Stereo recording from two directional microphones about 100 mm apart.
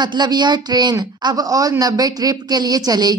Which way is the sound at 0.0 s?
45° right (ahead or behind).